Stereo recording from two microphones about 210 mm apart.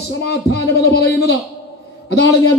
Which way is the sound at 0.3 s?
50° left (ahead or behind).